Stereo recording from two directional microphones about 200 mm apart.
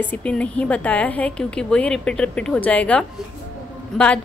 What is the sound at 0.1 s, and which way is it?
A woman's voice, 5° left (ahead or behind).